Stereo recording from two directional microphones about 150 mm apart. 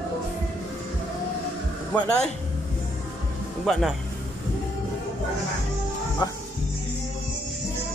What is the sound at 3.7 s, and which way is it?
Speech, centre (ahead or behind).